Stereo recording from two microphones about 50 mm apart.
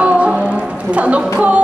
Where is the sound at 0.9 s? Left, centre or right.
Right.